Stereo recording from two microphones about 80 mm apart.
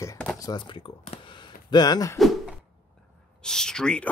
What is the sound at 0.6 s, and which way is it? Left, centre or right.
Speech, left.